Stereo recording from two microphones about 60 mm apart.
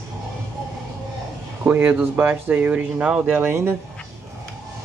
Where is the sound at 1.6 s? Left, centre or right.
Right.